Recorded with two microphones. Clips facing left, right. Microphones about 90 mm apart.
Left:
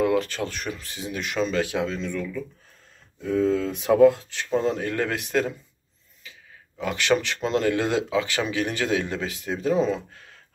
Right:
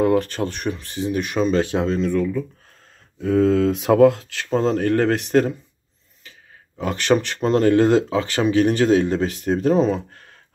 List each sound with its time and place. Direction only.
0.0 s a sound: 45° right (ahead or behind)
1.5 s speech: 35° right (ahead or behind)
3.2 s speech: 55° right (ahead or behind)
6.8 s speech: 40° right (ahead or behind)